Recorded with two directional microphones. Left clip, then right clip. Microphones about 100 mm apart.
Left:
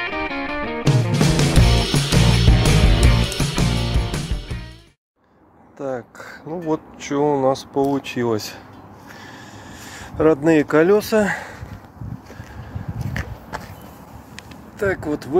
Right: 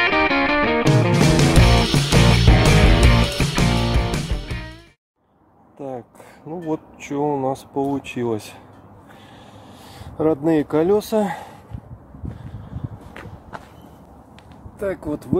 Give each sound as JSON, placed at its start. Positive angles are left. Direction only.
{"t": 0.0, "sound": "music", "side_deg": 0}
{"t": 5.8, "sound": "a sound", "side_deg": -40}
{"t": 6.7, "sound": "speech", "side_deg": -35}
{"t": 9.8, "sound": "speech", "side_deg": -20}
{"t": 14.8, "sound": "speech", "side_deg": -20}